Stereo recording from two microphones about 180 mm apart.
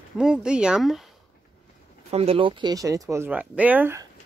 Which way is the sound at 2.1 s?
35° right (ahead or behind).